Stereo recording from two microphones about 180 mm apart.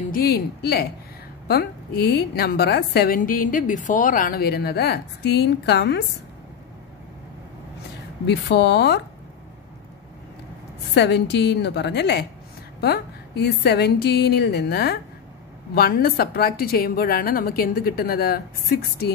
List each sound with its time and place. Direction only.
0.1 s a woman's voice: 60° left (ahead or behind)
8.3 s a woman's voice: 70° left (ahead or behind)
11.0 s a woman's voice: 70° left (ahead or behind)